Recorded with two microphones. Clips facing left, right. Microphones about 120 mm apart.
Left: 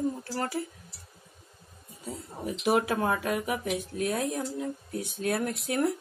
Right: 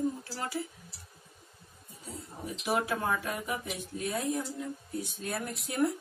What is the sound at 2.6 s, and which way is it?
Speech, 65° left (ahead or behind).